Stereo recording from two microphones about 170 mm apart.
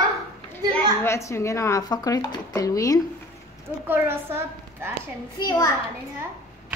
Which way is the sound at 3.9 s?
15° right (ahead or behind).